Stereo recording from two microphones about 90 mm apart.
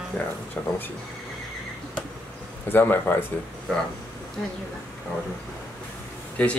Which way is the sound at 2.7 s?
25° left (ahead or behind).